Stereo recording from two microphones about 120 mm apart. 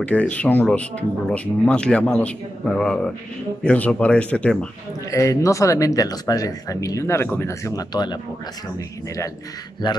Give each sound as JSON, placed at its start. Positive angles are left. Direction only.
{"t": 0.0, "sound": "a man's voice", "side_deg": 10}
{"t": 5.1, "sound": "speech", "side_deg": 25}
{"t": 7.9, "sound": "speech", "side_deg": 35}